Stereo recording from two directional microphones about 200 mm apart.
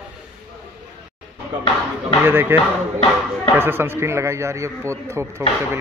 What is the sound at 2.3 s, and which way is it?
Speech, 10° right (ahead or behind).